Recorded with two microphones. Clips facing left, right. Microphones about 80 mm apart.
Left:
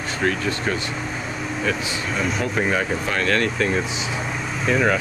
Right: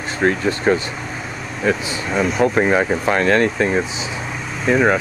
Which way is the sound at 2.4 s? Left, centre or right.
Right.